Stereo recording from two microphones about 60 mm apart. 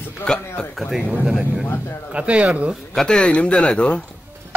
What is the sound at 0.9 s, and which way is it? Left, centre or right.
Speech, centre.